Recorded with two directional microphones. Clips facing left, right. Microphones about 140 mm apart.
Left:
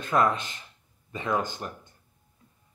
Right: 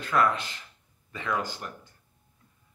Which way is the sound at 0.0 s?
20° left (ahead or behind).